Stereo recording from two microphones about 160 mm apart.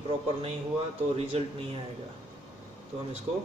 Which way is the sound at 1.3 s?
35° right (ahead or behind).